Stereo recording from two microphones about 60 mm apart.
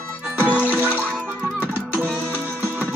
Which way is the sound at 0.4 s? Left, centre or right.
Right.